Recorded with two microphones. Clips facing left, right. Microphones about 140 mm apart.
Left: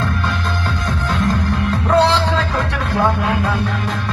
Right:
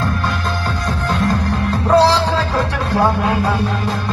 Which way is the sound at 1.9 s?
35° right (ahead or behind).